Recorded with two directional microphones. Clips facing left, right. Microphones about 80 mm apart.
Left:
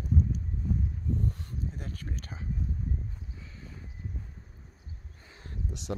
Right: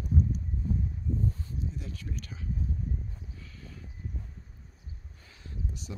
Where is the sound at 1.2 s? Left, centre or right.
Left.